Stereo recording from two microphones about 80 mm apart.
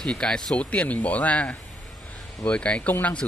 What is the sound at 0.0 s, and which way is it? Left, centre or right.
Speech, centre.